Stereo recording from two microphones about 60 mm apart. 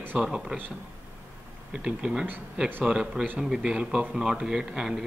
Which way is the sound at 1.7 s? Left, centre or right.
Centre.